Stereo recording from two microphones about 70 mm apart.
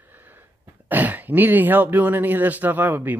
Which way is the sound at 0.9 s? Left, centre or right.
Right.